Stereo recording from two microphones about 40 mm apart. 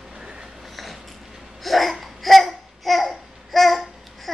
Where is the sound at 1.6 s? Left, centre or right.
Centre.